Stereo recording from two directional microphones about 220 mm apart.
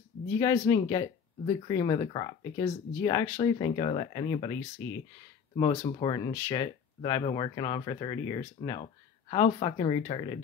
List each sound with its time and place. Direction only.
0.3 s speech: 15° left (ahead or behind)